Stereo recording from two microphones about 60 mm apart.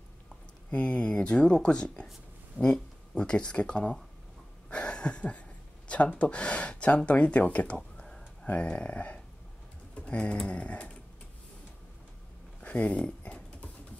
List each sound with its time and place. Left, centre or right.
0.7 s speech: centre
4.6 s a sound: centre
5.9 s speech: left
10.0 s typing: centre
10.5 s snoring: centre
12.5 s a sound: left